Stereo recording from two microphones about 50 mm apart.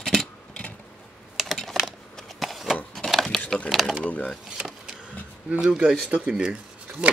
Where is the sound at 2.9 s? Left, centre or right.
Centre.